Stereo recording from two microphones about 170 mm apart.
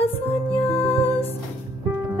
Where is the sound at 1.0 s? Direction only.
10° left (ahead or behind).